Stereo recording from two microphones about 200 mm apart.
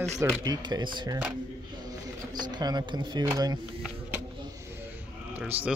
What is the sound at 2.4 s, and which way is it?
Speech, 20° right (ahead or behind).